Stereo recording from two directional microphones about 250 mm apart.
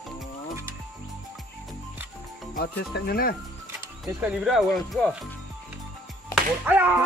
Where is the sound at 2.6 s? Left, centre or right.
Left.